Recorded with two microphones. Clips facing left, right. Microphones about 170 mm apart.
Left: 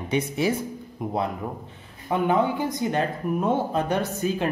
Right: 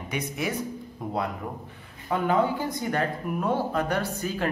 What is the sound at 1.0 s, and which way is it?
Speech, 20° left (ahead or behind).